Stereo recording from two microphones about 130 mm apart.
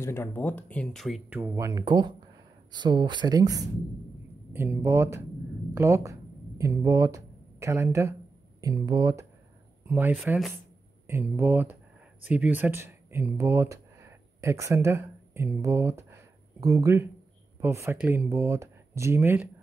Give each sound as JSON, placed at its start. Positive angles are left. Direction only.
{"t": 0.0, "sound": "speech", "side_deg": 20}
{"t": 1.4, "sound": "speech", "side_deg": -25}
{"t": 4.5, "sound": "speech", "side_deg": -15}
{"t": 9.8, "sound": "speech", "side_deg": -15}